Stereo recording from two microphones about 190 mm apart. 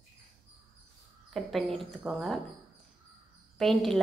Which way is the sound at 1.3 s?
Centre (ahead or behind).